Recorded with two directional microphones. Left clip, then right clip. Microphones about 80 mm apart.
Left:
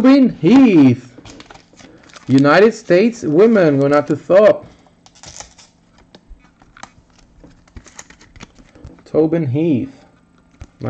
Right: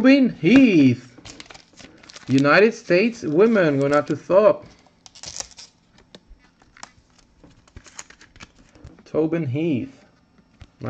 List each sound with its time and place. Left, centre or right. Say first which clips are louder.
0.0 s speech: left 5 dB; centre
1.2 s a sound: left 3 dB; right
2.4 s speech: left 5 dB; centre
3.7 s speech: left 6 dB; centre
4.0 s speech: left 6 dB; centre
5.0 s typing: right 1 dB; right
8.1 s a sound: left 4 dB; centre
9.3 s speech: left 7 dB; left